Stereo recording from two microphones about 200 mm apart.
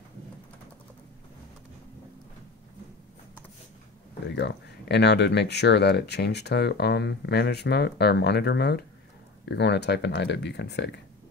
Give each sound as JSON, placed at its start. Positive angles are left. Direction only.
{"t": 4.4, "sound": "speech", "side_deg": 55}